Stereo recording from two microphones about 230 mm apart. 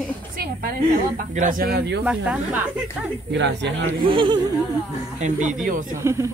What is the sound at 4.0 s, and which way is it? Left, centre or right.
Speech, right.